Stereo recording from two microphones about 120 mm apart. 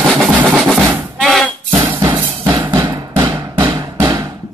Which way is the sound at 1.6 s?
40° right (ahead or behind).